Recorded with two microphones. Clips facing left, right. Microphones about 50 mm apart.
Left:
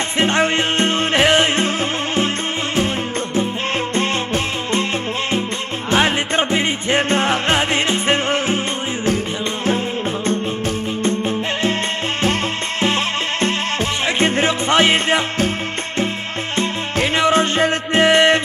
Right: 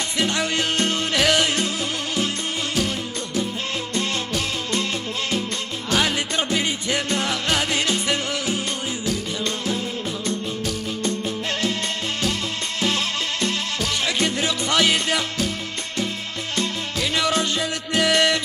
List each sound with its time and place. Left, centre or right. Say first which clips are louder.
0.2 s music: left 6 dB; left
3.9 s music: left 6 dB; left
5.9 s music: left 5 dB; left
11.0 s music: left 7 dB; left
12.8 s music: left 5 dB; left
16.5 s music: left 5 dB; left